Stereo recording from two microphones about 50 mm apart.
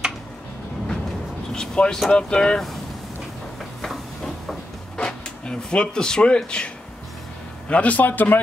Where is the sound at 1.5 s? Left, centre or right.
Centre.